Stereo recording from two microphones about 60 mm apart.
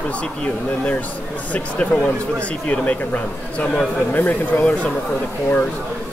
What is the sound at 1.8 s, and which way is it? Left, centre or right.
Speech, left.